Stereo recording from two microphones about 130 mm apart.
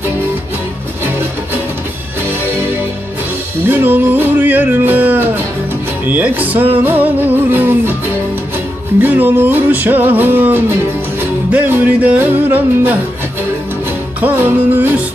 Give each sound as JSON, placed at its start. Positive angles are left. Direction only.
{"t": 3.6, "sound": "music", "side_deg": -15}
{"t": 9.0, "sound": "music", "side_deg": -15}
{"t": 14.2, "sound": "music", "side_deg": -15}